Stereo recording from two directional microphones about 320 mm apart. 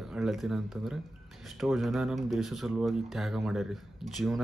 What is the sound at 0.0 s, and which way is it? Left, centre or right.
Speech, centre.